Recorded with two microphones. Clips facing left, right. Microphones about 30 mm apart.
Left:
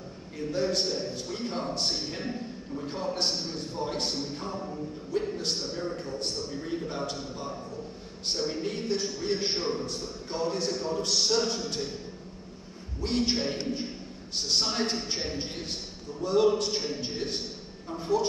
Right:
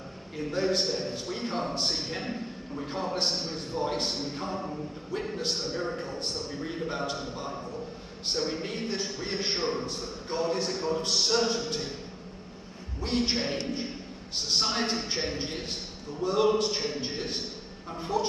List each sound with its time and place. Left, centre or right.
0.5 s a man's voice: centre
13.0 s a man's voice: centre